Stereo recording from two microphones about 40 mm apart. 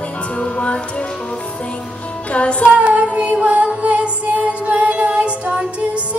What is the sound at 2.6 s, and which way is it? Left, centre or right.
Music, right.